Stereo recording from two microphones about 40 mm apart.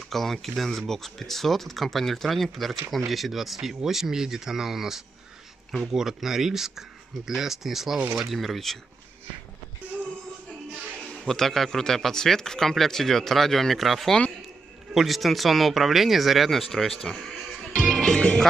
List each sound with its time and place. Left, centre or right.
0.1 s speech: centre
11.2 s speech: centre
18.0 s music: left